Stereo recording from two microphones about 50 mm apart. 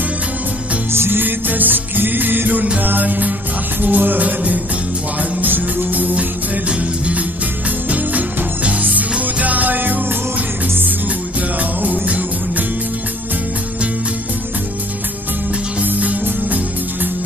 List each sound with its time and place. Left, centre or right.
0.9 s music: right
11.8 s music: right
15.8 s music: right